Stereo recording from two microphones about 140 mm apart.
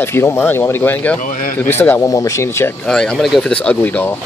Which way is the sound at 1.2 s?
70° left (ahead or behind).